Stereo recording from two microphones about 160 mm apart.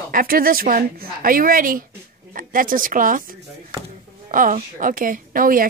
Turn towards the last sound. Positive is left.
turn(degrees=-60)  # may be behind; listen again after turning